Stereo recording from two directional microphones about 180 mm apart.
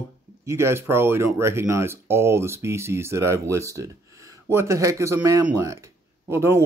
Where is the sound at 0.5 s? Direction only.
15° right (ahead or behind).